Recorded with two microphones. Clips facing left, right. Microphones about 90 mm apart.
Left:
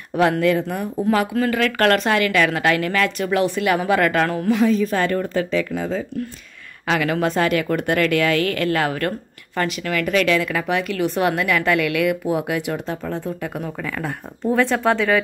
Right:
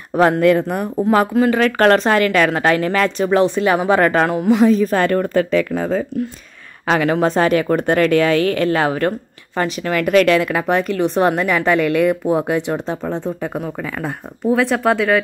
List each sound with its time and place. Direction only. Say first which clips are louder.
0.4 s speech: right 5 dB; 50° right (ahead or behind)
1.0 s a woman's voice: right 4 dB; 35° right (ahead or behind)
1.3 s a woman's voice: right 5 dB; 25° right (ahead or behind)
4.3 s speech: right 4 dB; 20° right (ahead or behind)
4.6 s speech: right 4 dB; 40° right (ahead or behind)
6.9 s a woman's voice: right 4 dB; 30° right (ahead or behind)
9.9 s a woman's voice: right 6 dB; 45° right (ahead or behind); by 13.5 s 25° right (ahead or behind)
13.6 s speech: right 3 dB; 15° right (ahead or behind)